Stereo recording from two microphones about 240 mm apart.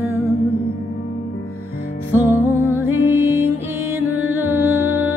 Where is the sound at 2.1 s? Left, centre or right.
Centre.